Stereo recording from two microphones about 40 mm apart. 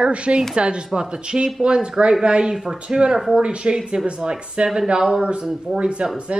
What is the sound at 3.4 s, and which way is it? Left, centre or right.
Speech, right.